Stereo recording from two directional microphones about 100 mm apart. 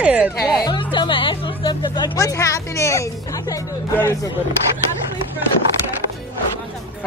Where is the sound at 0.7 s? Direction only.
55° left (ahead or behind); by 3.1 s 30° left (ahead or behind).